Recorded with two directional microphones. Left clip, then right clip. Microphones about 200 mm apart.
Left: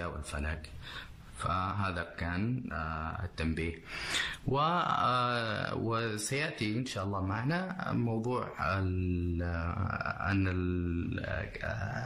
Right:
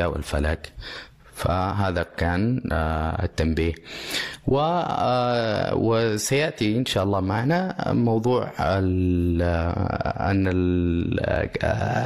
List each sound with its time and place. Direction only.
0.0 s speech: 35° right (ahead or behind)